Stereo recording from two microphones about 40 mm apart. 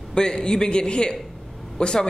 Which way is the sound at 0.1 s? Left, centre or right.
Left.